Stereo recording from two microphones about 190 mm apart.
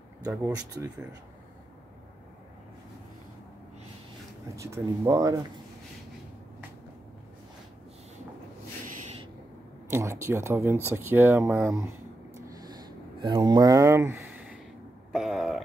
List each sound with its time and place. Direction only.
0.2 s speech: 10° right (ahead or behind)
0.5 s speech: 20° right (ahead or behind)
4.6 s speech: 15° right (ahead or behind)
9.8 s speech: 15° right (ahead or behind)
12.4 s a sound: 20° right (ahead or behind); by 15.6 s centre (ahead or behind)